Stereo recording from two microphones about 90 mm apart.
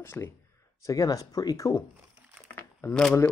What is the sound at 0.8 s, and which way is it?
Speech, 40° left (ahead or behind).